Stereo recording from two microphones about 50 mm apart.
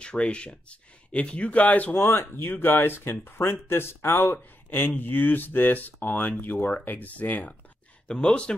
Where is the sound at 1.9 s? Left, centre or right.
Left.